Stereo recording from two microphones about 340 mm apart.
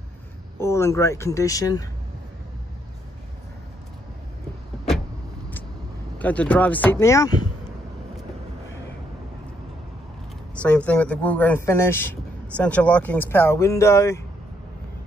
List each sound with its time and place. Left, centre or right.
0.6 s speech: centre
6.1 s speech: centre
10.5 s speech: centre